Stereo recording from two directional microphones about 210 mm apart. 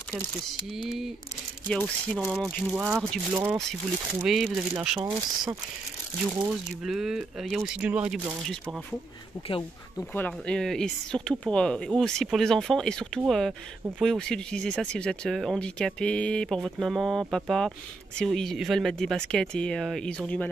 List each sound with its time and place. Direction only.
1.7 s speech: 5° left (ahead or behind)
5.1 s speech: 20° right (ahead or behind)
6.4 s speech: centre (ahead or behind)
9.9 s speech: 10° left (ahead or behind)